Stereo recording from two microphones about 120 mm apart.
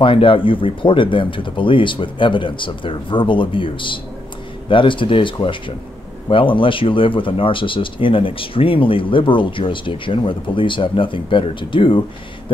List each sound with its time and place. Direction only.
0.0 s speech: 45° left (ahead or behind)